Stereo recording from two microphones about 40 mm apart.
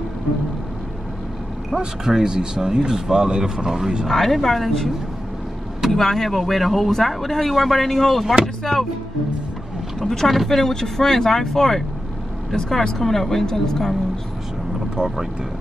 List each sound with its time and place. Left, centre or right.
1.8 s speech: centre
4.1 s speech: centre
9.9 s a woman's voice: centre
10.6 s a woman's voice: centre
15.0 s speech: right